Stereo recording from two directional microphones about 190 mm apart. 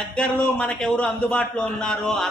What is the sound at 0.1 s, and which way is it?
A man's voice, 5° left (ahead or behind).